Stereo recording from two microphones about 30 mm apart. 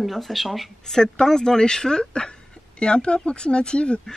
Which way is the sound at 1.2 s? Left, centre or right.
Centre.